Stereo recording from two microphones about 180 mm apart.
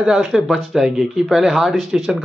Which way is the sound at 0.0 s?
Centre (ahead or behind).